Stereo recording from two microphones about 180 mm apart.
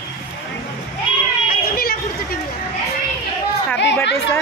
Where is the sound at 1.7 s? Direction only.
55° left (ahead or behind).